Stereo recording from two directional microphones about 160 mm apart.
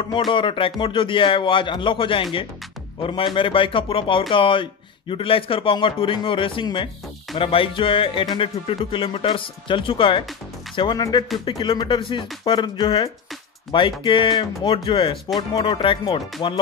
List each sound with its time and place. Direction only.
0.3 s speech: 30° left (ahead or behind)